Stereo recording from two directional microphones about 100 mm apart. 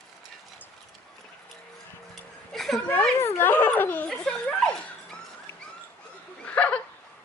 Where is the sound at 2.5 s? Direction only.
5° left (ahead or behind).